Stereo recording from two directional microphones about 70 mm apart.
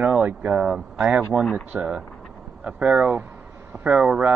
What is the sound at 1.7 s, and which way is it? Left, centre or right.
Speech, centre.